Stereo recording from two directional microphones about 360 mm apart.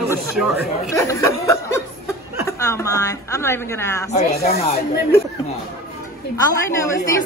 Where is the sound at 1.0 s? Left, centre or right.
Centre.